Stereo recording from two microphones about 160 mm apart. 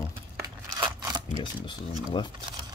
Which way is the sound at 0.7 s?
30° right (ahead or behind).